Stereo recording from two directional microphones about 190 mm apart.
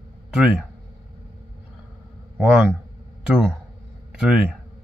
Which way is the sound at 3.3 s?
5° right (ahead or behind).